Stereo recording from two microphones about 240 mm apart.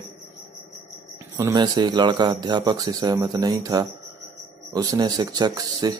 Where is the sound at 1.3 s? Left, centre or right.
Centre.